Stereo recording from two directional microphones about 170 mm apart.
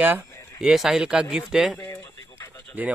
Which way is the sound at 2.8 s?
10° right (ahead or behind).